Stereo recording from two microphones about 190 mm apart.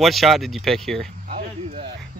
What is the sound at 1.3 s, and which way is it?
Speech, 30° right (ahead or behind).